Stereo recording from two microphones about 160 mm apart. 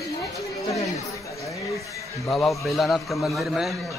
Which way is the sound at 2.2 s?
5° left (ahead or behind).